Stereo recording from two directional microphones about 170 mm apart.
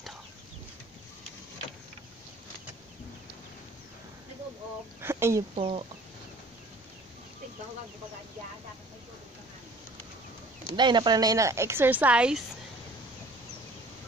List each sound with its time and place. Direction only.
5.0 s speech: 15° right (ahead or behind)
5.6 s speech: 35° right (ahead or behind)
10.8 s speech: 25° right (ahead or behind); by 12.4 s 5° right (ahead or behind)